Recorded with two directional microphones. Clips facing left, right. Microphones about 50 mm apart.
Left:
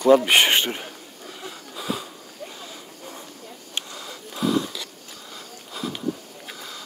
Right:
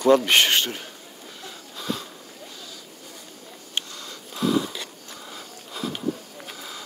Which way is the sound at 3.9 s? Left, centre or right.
Centre.